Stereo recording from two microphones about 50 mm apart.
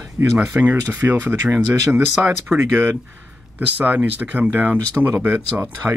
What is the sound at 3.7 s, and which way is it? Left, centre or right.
Speech, right.